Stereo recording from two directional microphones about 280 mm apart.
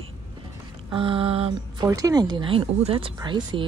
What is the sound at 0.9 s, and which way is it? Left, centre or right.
Speech, centre.